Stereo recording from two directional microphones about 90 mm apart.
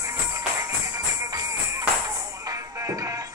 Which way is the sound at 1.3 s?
45° right (ahead or behind).